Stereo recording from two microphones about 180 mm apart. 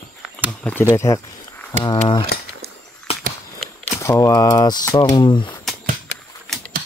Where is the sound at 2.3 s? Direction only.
60° left (ahead or behind).